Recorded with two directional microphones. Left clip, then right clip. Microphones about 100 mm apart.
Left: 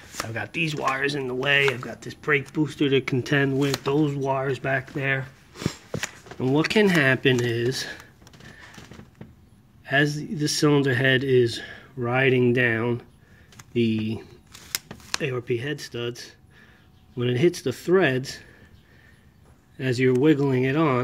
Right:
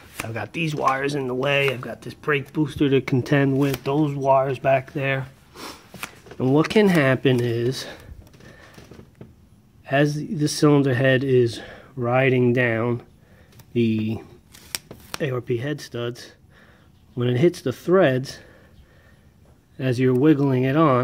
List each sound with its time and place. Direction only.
0.3 s speech: 20° right (ahead or behind)
1.8 s speech: 10° right (ahead or behind)
2.8 s speech: 30° right (ahead or behind)
3.8 s speech: 10° right (ahead or behind)
6.4 s speech: 30° right (ahead or behind)
9.8 s speech: 25° right (ahead or behind)
15.2 s speech: 35° right (ahead or behind)
19.8 s speech: 30° right (ahead or behind)